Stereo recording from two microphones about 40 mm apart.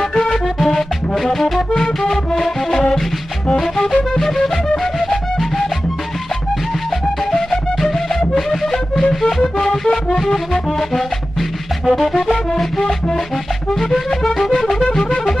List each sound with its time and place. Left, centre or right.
0.1 s music: centre
0.6 s music: centre
7.2 s music: centre
11.9 s music: centre
14.8 s music: left